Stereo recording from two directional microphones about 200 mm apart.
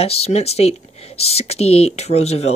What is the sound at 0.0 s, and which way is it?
Speech, 30° left (ahead or behind).